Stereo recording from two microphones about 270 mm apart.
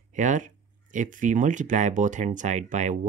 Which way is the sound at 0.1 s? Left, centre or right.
Right.